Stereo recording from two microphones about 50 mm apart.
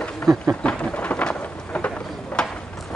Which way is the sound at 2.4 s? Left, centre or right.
Centre.